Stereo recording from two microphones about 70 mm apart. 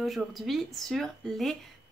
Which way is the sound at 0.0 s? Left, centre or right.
Centre.